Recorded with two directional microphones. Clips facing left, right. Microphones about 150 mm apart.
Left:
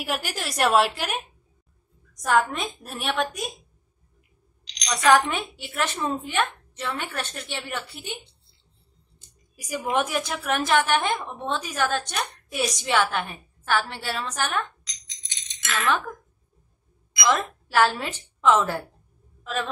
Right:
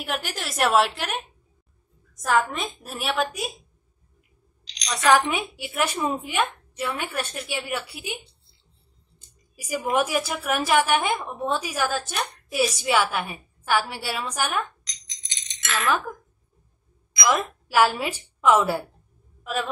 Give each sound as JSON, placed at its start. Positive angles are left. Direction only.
{"t": 0.0, "sound": "a woman's voice", "side_deg": 0}
{"t": 4.7, "sound": "a woman's voice", "side_deg": 0}
{"t": 5.3, "sound": "a woman's voice", "side_deg": -10}
{"t": 9.6, "sound": "a woman's voice", "side_deg": -10}
{"t": 15.7, "sound": "a woman's voice", "side_deg": -5}
{"t": 17.2, "sound": "a woman's voice", "side_deg": -5}